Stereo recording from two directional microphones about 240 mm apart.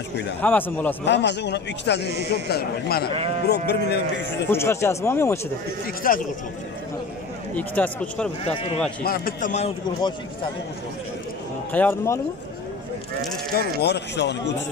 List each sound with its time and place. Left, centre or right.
0.4 s speech: centre
1.0 s a man's voice: left
2.0 s a man's voice: right
2.5 s a man's voice: left
4.5 s speech: centre
6.0 s a man's voice: left
7.5 s speech: centre
8.5 s speech: left
9.0 s a man's voice: left
11.7 s speech: centre
13.7 s a man's voice: left